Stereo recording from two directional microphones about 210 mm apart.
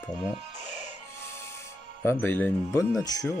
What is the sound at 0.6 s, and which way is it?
Music, 35° left (ahead or behind).